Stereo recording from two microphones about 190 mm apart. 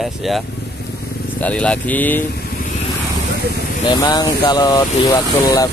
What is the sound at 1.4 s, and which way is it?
Speech, 5° left (ahead or behind).